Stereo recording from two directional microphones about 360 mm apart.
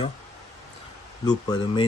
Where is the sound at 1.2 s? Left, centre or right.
Centre.